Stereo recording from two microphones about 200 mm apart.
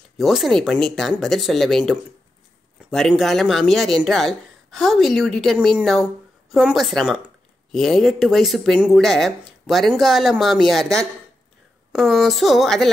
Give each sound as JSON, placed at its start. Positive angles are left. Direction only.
{"t": 0.2, "sound": "speech", "side_deg": 0}
{"t": 2.9, "sound": "speech", "side_deg": 0}